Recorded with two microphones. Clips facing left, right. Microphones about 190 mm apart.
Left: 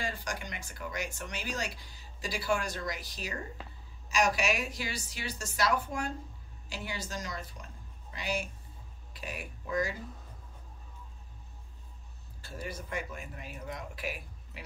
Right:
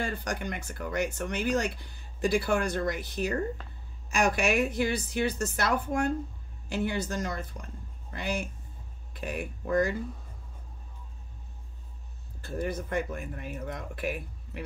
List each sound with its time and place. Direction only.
0.0 s speech: 60° right (ahead or behind)
12.4 s speech: 55° right (ahead or behind)